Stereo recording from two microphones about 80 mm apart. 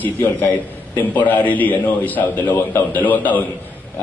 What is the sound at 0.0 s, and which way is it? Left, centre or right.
A man's voice, left.